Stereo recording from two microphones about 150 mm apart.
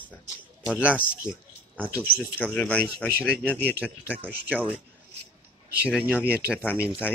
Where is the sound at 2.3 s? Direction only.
10° left (ahead or behind).